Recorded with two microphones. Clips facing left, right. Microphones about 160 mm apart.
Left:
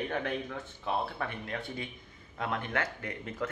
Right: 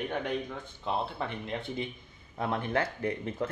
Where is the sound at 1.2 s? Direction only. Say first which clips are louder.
Right 2 dB; 20° right (ahead or behind).